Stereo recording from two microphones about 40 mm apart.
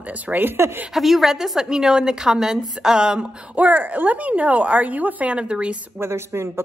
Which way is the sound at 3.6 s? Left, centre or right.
Right.